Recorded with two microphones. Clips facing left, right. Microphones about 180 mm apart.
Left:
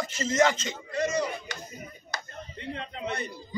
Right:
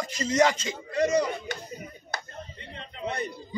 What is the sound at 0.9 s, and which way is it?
Speech, 55° right (ahead or behind).